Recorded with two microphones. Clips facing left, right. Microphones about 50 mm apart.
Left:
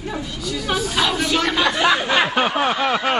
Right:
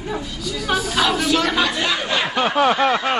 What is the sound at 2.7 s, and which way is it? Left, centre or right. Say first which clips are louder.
Speech: right 3 dB; centre.